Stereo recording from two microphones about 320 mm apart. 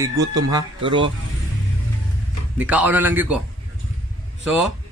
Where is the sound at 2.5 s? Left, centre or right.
Centre.